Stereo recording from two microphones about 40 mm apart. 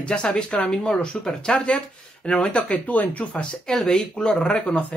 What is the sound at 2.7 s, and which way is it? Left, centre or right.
Speech, left.